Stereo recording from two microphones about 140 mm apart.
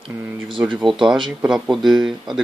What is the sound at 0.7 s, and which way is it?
Speech, 5° right (ahead or behind).